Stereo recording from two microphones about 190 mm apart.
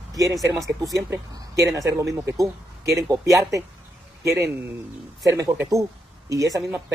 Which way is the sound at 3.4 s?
15° right (ahead or behind).